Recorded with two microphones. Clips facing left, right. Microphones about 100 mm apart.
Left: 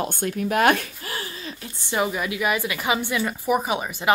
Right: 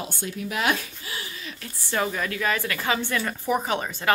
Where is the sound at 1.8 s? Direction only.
15° left (ahead or behind).